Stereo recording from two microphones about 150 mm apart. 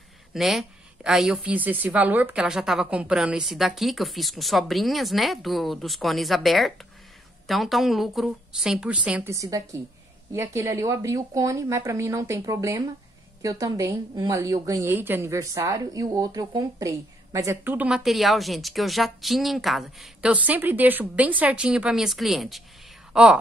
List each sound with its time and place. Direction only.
0.3 s a woman's voice: centre (ahead or behind)
9.3 s a woman's voice: 20° right (ahead or behind); by 23.4 s 5° right (ahead or behind)